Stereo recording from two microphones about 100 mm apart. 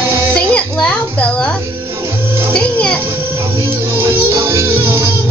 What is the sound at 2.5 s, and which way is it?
Music, 10° left (ahead or behind).